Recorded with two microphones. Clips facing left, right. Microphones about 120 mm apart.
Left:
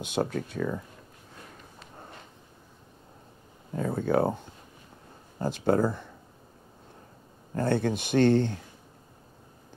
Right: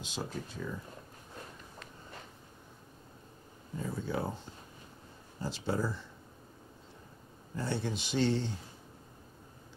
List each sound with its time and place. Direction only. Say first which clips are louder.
0.0 s speech: left 10 dB; 60° left (ahead or behind)
3.7 s speech: left 10 dB; 60° left (ahead or behind)
7.5 s speech: left 9 dB; 55° left (ahead or behind)